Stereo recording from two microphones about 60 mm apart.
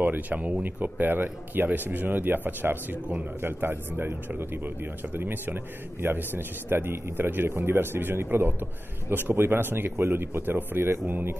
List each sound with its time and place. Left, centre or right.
0.0 s a man's voice: right